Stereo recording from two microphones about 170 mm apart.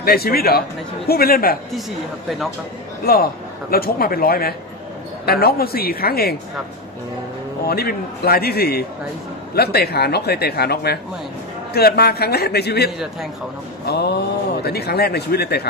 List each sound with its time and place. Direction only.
0.0 s a man's voice: 65° left (ahead or behind)
2.2 s speech: centre (ahead or behind)
3.1 s a man's voice: 60° left (ahead or behind)
7.6 s a man's voice: 65° left (ahead or behind)